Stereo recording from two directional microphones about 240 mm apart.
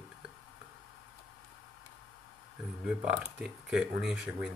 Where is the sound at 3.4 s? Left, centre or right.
Centre.